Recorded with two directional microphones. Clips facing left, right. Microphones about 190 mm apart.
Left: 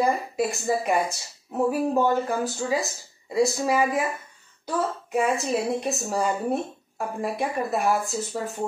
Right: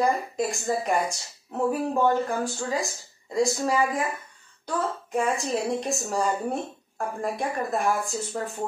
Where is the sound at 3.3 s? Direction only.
5° left (ahead or behind).